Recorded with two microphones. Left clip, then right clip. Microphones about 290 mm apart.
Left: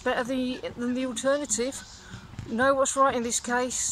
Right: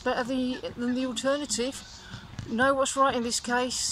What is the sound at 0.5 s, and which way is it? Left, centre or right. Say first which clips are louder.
Speech: even; centre.